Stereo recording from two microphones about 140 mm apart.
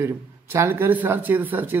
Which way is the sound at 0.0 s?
20° right (ahead or behind).